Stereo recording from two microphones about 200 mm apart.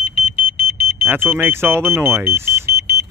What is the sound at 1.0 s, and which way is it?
Speech, 10° right (ahead or behind).